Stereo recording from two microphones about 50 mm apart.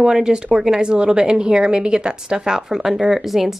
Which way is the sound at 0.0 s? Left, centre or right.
Centre.